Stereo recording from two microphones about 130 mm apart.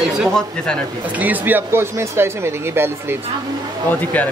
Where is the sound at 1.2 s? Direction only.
15° right (ahead or behind).